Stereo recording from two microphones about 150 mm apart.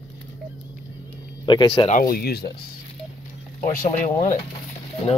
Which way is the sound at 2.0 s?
85° left.